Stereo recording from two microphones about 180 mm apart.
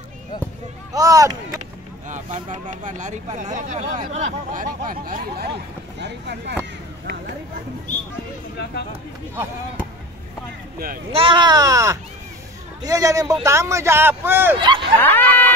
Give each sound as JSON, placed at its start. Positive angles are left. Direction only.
{"t": 0.9, "sound": "speech", "side_deg": -20}
{"t": 2.0, "sound": "speech", "side_deg": -45}
{"t": 5.9, "sound": "speech", "side_deg": -70}
{"t": 11.1, "sound": "a man's voice", "side_deg": -30}
{"t": 14.6, "sound": "speech", "side_deg": -25}
{"t": 15.0, "sound": "a sound", "side_deg": 10}